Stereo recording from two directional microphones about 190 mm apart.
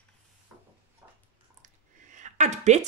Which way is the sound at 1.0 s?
15° right (ahead or behind).